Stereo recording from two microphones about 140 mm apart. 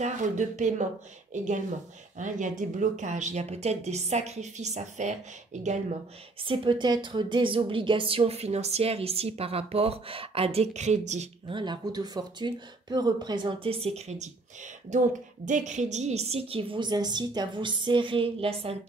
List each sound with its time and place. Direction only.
0.0 s speech: 60° right (ahead or behind)
6.4 s speech: 35° right (ahead or behind); by 11.2 s 55° right (ahead or behind)
11.4 s a woman's voice: 35° right (ahead or behind)